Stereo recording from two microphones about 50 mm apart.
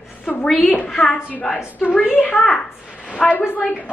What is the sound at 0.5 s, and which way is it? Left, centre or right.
Speech, centre.